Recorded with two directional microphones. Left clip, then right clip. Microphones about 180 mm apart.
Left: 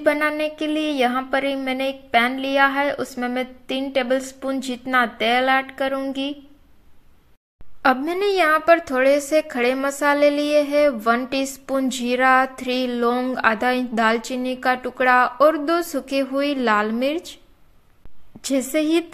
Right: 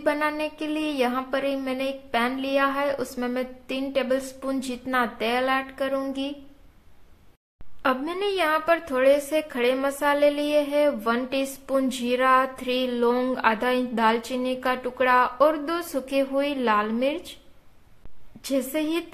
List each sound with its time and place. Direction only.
0.0 s a woman's voice: 20° left (ahead or behind)
7.8 s a woman's voice: 30° left (ahead or behind)
18.4 s a woman's voice: 25° left (ahead or behind)